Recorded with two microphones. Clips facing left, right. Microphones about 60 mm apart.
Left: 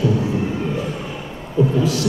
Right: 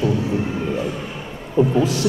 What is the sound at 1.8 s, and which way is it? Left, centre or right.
Speech, right.